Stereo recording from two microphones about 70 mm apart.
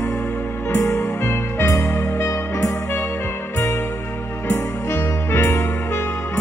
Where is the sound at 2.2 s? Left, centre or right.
Left.